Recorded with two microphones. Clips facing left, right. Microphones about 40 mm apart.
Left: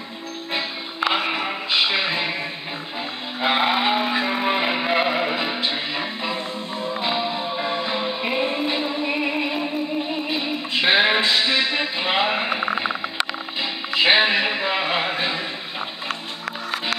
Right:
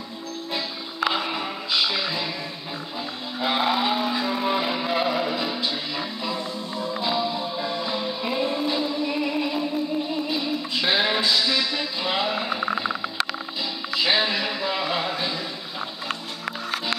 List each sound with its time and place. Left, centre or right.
0.5 s music: left
3.3 s music: left